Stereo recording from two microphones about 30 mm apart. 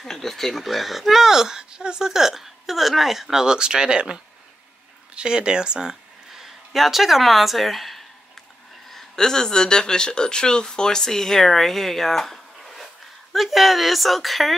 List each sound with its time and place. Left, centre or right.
0.0 s speech: centre
0.7 s a woman's voice: centre
1.3 s speech: centre
2.0 s speech: centre
3.4 s speech: right
5.9 s speech: centre
9.1 s speech: left
13.3 s a woman's voice: centre